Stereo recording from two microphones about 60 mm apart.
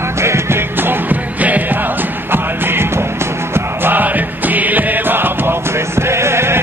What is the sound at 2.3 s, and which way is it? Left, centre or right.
Music, right.